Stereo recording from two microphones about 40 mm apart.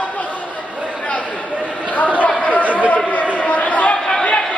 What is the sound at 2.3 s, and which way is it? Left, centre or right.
Chatter, left.